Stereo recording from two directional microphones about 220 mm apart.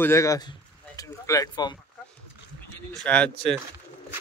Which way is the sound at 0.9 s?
15° left (ahead or behind).